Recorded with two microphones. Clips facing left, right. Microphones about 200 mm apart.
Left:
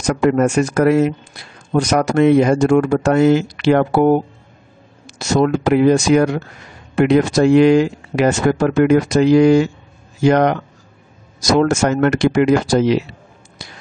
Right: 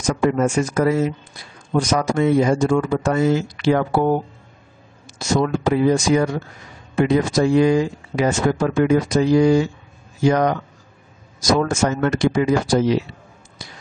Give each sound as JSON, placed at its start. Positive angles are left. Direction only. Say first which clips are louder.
{"t": 0.0, "sound": "speech", "louder": "left 4 dB", "side_deg": 65}
{"t": 11.6, "sound": "speech", "louder": "left 5 dB", "side_deg": 70}
{"t": 13.6, "sound": "finger snapping", "louder": "left 2 dB", "side_deg": 75}